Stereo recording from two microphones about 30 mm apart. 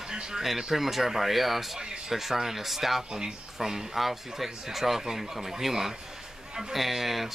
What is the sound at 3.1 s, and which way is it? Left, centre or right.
Speech, right.